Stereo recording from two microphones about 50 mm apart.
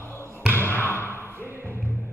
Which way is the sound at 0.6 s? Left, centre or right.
Left.